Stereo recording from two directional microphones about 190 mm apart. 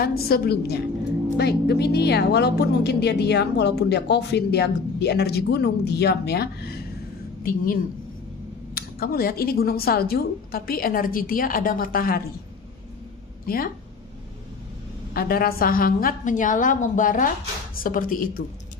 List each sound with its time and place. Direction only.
0.0 s a woman's voice: 55° left (ahead or behind)
7.4 s a woman's voice: 45° left (ahead or behind)
13.5 s a woman's voice: 50° left (ahead or behind)
15.1 s a woman's voice: 50° left (ahead or behind)